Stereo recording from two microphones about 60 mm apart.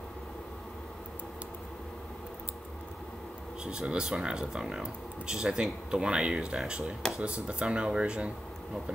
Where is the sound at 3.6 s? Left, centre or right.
Centre.